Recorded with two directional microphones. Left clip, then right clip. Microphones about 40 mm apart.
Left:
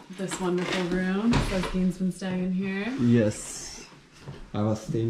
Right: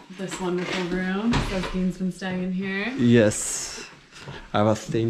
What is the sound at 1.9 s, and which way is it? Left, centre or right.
Speech, centre.